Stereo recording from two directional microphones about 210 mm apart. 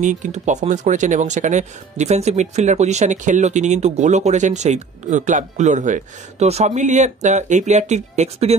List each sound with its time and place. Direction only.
0.0 s speech: 35° right (ahead or behind)